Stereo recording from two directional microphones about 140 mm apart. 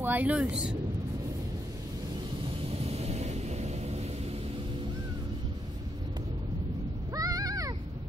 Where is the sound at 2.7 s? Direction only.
45° right (ahead or behind).